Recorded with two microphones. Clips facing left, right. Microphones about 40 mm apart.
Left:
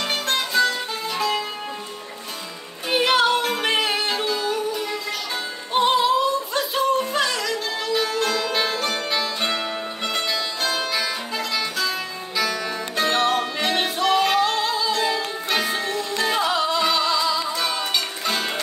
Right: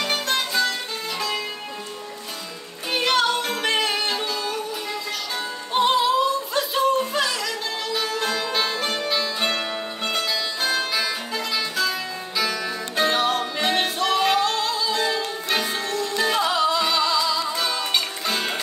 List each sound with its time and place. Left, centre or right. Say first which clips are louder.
0.0 s music: even; centre
2.9 s music: left 3 dB; centre
5.7 s music: left 1 dB; centre